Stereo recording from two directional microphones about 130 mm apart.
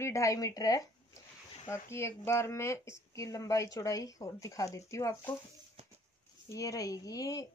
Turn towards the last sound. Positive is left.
turn(degrees=25)  # may be behind; listen again after turning